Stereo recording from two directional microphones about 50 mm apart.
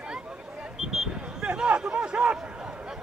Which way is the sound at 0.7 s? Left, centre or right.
Centre.